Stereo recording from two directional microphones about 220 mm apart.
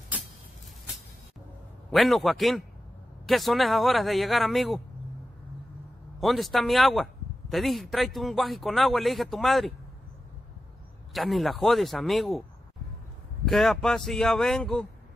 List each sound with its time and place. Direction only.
1.9 s speech: centre (ahead or behind)
6.1 s speech: centre (ahead or behind)
11.1 s speech: centre (ahead or behind)
13.5 s speech: centre (ahead or behind)